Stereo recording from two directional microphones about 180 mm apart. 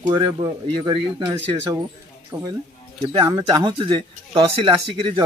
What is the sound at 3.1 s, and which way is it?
Speech, 20° right (ahead or behind).